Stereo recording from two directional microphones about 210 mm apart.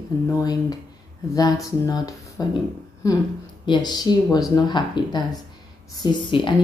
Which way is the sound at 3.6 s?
20° left (ahead or behind).